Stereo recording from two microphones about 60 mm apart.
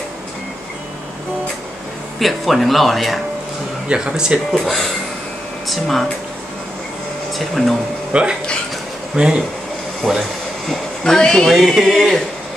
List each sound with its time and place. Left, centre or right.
2.1 s speech: centre
3.9 s speech: centre
4.5 s speech: centre
7.3 s speech: centre
8.1 s speech: centre
10.0 s speech: centre
11.4 s speech: centre